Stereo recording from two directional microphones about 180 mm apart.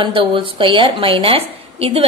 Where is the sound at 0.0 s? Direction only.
30° right (ahead or behind).